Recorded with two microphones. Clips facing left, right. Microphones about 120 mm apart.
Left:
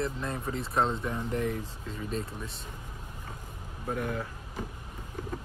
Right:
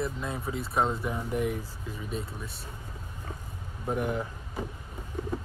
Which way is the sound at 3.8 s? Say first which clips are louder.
Right 3 dB; 20° right (ahead or behind).